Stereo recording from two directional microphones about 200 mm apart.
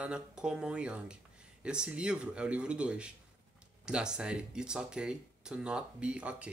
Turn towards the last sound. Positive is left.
turn(degrees=-5)  # may be behind; listen again after turning